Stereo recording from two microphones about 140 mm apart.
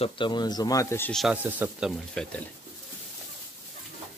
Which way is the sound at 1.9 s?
5° left (ahead or behind).